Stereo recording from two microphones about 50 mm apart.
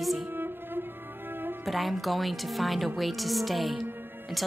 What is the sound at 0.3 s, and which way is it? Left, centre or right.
Music, right.